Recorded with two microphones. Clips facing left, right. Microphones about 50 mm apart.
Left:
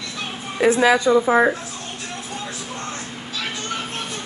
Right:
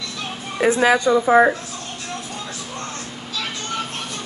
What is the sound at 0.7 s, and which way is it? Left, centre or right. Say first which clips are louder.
Speech: even; right.